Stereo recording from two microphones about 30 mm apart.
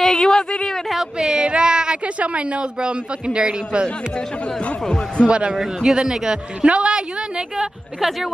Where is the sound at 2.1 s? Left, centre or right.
Right.